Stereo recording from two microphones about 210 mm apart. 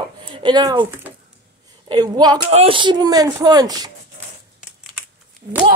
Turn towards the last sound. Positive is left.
turn(degrees=-35)  # may be behind; listen again after turning